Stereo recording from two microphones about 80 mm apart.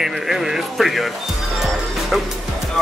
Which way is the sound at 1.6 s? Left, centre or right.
Centre.